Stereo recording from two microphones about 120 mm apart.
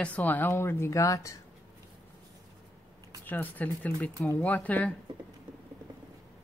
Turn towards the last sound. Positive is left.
turn(degrees=15)  # may be behind; listen again after turning